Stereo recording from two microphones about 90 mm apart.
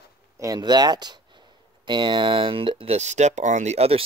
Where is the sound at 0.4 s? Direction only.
45° right (ahead or behind); by 2.9 s 75° right (ahead or behind).